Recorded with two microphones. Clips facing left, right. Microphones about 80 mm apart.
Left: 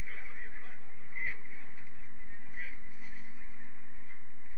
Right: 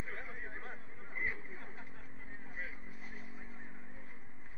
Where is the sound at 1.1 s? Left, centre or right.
Right.